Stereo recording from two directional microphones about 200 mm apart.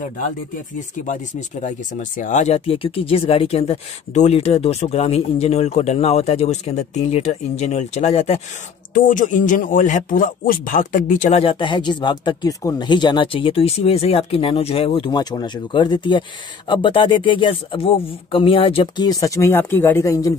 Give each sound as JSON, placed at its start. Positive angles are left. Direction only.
{"t": 1.0, "sound": "speech", "side_deg": 35}
{"t": 8.9, "sound": "a man's voice", "side_deg": 40}